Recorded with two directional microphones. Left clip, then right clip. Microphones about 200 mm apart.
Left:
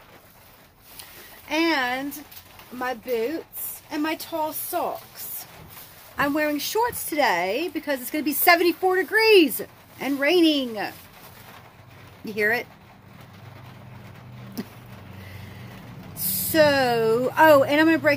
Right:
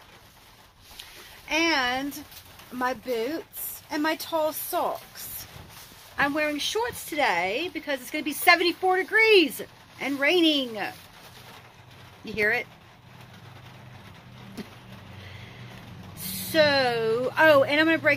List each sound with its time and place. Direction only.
1.5 s speech: 5° left (ahead or behind)
2.8 s speech: 25° right (ahead or behind)
6.1 s speech: 15° left (ahead or behind)
12.4 s speech: 15° left (ahead or behind)
16.2 s a sound: 50° left (ahead or behind)
16.5 s speech: 15° left (ahead or behind)